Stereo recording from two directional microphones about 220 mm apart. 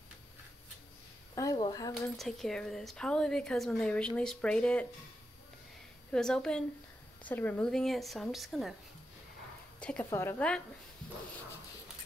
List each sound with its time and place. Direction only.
1.3 s speech: 15° left (ahead or behind)
2.1 s a woman's voice: centre (ahead or behind)
6.1 s a woman's voice: 5° left (ahead or behind)
9.8 s a woman's voice: 5° left (ahead or behind)